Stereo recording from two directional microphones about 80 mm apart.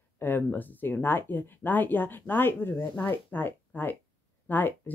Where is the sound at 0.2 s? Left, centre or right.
Left.